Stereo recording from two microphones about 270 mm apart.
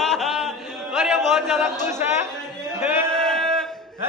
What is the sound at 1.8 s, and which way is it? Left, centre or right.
Speech, centre.